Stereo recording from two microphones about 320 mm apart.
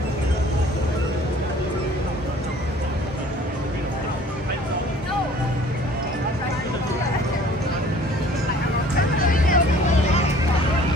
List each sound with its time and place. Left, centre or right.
9.2 s hubbub: left